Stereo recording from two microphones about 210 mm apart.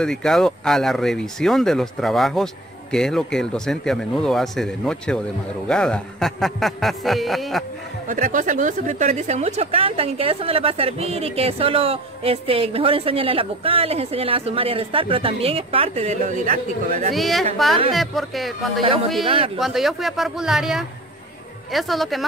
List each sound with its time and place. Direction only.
0.0 s speech: 5° left (ahead or behind)
8.1 s a woman's voice: 40° right (ahead or behind)
17.1 s speech: centre (ahead or behind)
19.2 s a woman's voice: 25° right (ahead or behind)
19.6 s speech: centre (ahead or behind)